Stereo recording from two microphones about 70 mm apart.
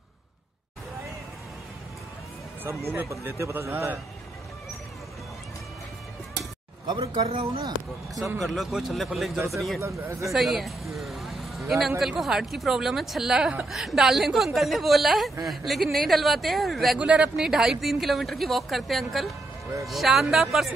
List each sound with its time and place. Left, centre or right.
3.7 s a man's voice: right
6.9 s a man's voice: right
8.4 s a woman's voice: centre
9.8 s speech: right
10.3 s a woman's voice: centre
17.0 s speech: centre
17.4 s a woman's voice: centre